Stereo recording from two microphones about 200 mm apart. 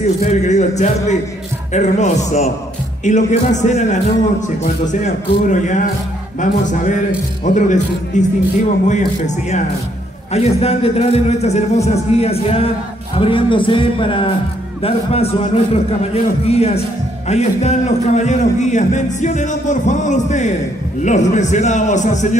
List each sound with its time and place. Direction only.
0.3 s a man's voice: 35° left (ahead or behind)